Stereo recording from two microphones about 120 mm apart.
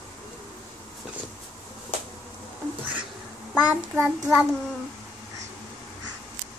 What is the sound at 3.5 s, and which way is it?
Child singing, 10° right (ahead or behind).